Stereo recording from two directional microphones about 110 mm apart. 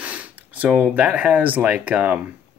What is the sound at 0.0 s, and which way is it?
Speech, 15° right (ahead or behind).